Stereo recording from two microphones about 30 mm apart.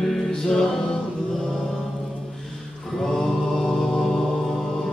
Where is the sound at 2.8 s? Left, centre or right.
Centre.